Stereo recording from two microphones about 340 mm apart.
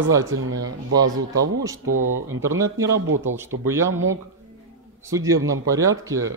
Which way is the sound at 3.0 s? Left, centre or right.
Right.